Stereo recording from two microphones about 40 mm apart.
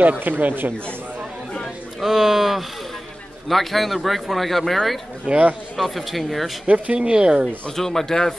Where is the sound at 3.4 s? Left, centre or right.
Centre.